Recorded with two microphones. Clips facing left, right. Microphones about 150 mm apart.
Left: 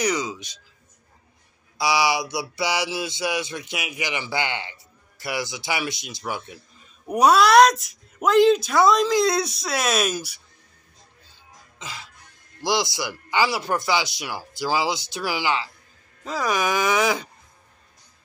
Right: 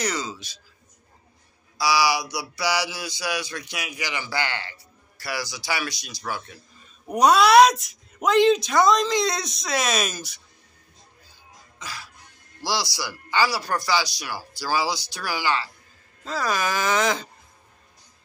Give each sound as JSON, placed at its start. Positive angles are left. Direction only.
{"t": 0.0, "sound": "speech", "side_deg": 15}
{"t": 1.8, "sound": "a sound", "side_deg": 20}
{"t": 7.1, "sound": "speech", "side_deg": 5}
{"t": 11.8, "sound": "music", "side_deg": 25}
{"t": 12.6, "sound": "a sound", "side_deg": 20}
{"t": 16.3, "sound": "speech", "side_deg": 15}